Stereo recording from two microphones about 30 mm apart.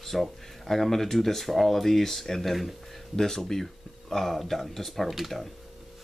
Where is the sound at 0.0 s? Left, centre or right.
Centre.